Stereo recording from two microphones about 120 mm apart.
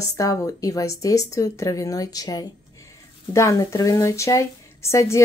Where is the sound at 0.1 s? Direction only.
30° left (ahead or behind).